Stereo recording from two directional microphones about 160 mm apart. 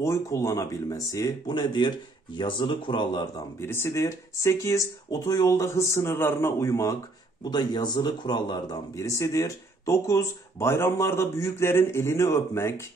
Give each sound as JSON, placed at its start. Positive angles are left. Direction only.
{"t": 0.0, "sound": "a man's voice", "side_deg": 20}
{"t": 3.6, "sound": "a man's voice", "side_deg": 15}